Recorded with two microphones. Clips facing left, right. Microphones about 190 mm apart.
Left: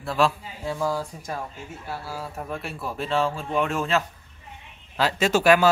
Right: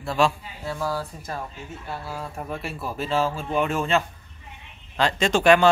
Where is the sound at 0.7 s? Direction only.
15° left (ahead or behind).